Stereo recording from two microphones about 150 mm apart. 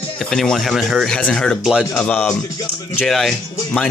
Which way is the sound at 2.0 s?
10° left (ahead or behind).